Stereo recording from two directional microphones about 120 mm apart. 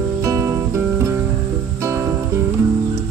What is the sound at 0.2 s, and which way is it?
Music, 25° right (ahead or behind).